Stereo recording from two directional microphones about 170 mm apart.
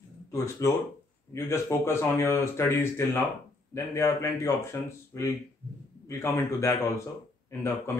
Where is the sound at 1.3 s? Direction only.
15° left (ahead or behind).